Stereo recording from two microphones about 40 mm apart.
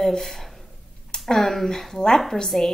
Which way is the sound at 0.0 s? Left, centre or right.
Centre.